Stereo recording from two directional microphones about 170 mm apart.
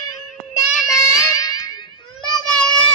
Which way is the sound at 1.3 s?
20° left (ahead or behind).